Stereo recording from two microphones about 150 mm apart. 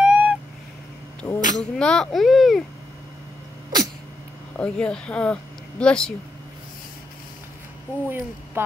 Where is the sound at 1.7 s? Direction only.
5° left (ahead or behind).